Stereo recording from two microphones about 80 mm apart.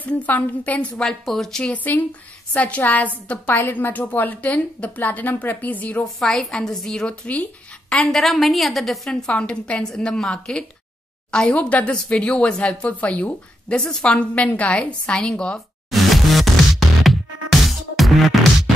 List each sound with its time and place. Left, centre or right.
0.0 s a woman's voice: centre
1.0 s a woman's voice: centre; by 6.0 s left
6.0 s speech: centre
15.9 s music: centre